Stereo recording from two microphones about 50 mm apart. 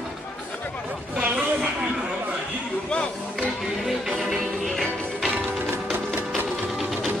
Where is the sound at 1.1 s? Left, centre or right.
Right.